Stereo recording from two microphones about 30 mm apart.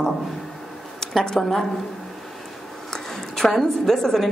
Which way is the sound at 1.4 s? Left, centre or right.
Centre.